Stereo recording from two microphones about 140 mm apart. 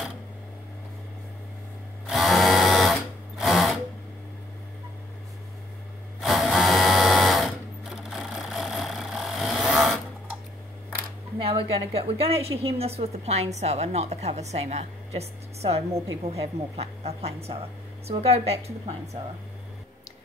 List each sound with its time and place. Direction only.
2.0 s drill: centre (ahead or behind)
6.2 s sewing machine: centre (ahead or behind)
11.3 s a woman's voice: 40° right (ahead or behind)